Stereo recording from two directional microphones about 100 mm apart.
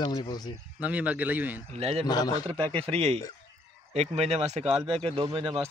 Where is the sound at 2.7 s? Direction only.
80° right.